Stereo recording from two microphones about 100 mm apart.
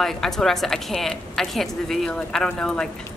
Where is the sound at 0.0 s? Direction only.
5° left (ahead or behind).